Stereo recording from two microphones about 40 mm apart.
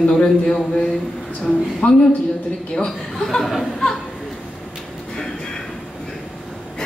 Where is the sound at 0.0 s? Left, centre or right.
Left.